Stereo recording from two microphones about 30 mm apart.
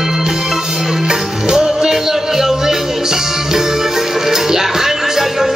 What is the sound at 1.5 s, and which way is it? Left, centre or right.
Music, centre.